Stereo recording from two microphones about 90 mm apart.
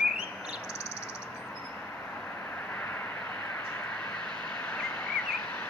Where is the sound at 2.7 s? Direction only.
20° left (ahead or behind).